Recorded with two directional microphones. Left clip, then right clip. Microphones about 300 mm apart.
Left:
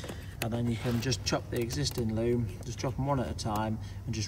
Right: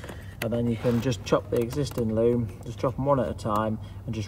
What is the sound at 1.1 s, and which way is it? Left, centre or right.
Speech, centre.